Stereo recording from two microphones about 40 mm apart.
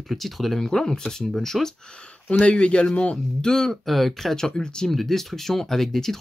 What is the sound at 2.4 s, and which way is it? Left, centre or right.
Speech, left.